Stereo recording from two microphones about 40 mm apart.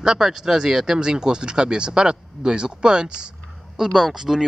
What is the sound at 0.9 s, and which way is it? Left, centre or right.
Speech, right.